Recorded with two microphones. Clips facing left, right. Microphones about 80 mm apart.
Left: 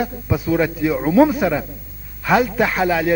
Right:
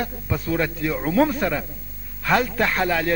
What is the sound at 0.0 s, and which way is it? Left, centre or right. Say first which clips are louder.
A man's voice: left 5 dB; centre.